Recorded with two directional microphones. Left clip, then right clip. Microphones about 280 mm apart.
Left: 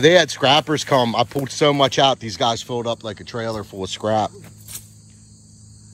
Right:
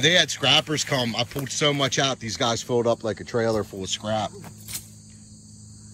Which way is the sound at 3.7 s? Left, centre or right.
Centre.